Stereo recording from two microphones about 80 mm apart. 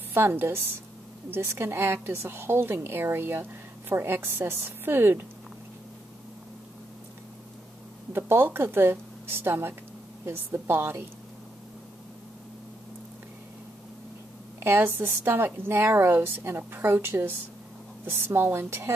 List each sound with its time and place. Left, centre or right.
0.1 s a woman's voice: right
8.1 s a woman's voice: right
14.6 s a woman's voice: right